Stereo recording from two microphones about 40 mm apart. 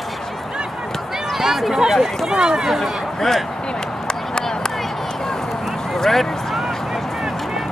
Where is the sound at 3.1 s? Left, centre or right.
Centre.